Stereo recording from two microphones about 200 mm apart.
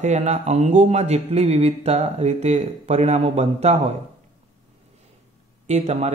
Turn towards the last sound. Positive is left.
turn(degrees=-35)  # may be behind; listen again after turning